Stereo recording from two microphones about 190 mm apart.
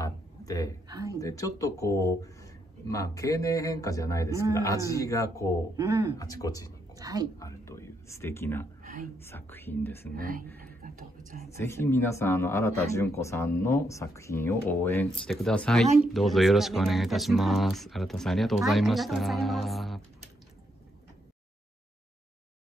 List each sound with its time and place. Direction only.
0.0 s a sound: 15° left (ahead or behind)
0.8 s speech: 20° right (ahead or behind)
1.1 s a man's voice: 15° left (ahead or behind)
5.8 s speech: 20° right (ahead or behind)
6.1 s a man's voice: 15° left (ahead or behind)
7.0 s speech: 20° right (ahead or behind)
7.3 s a man's voice: 15° left (ahead or behind)
10.1 s speech: 50° right (ahead or behind)
11.5 s a man's voice: 15° left (ahead or behind)